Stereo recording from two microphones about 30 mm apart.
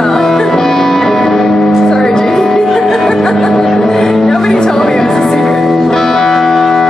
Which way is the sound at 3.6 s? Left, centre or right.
Centre.